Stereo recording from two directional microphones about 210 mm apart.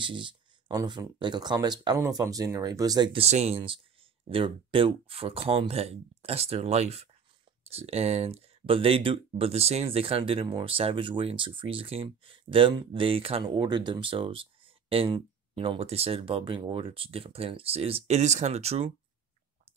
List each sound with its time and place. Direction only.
0.0 s speech: 25° right (ahead or behind)